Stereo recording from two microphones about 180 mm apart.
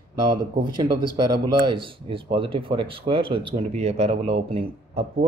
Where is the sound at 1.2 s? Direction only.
30° right (ahead or behind).